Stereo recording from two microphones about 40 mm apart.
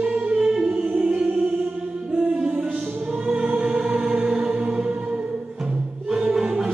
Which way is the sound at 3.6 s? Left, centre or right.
Right.